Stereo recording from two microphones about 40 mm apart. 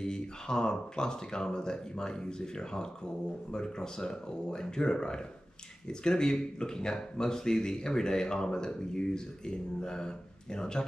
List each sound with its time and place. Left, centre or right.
0.0 s speech: centre